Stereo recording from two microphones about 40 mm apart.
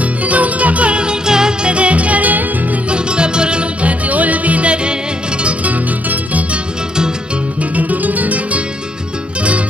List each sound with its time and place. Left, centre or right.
0.2 s music: right; by 1.7 s centre
1.7 s music: right
2.9 s music: right
4.1 s music: right
7.7 s music: right